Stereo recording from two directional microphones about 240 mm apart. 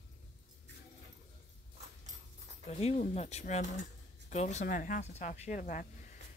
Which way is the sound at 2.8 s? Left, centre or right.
Left.